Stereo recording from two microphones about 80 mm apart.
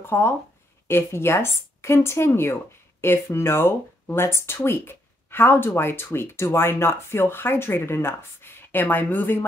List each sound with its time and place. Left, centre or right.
0.0 s speech: left